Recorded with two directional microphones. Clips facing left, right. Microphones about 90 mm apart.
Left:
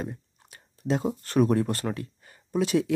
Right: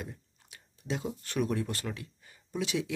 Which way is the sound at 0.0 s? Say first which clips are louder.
Left 8 dB; 40° left (ahead or behind).